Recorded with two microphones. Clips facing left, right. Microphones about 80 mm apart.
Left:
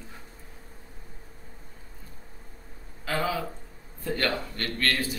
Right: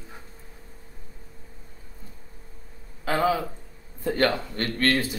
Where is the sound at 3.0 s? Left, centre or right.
Right.